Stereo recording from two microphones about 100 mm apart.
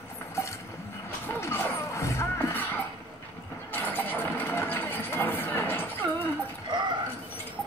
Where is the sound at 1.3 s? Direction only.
25° left (ahead or behind).